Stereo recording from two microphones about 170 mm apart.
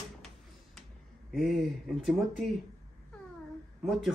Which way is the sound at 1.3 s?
Centre (ahead or behind).